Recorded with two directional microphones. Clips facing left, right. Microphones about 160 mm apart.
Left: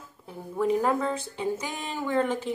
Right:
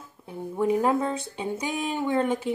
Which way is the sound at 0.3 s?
20° right (ahead or behind).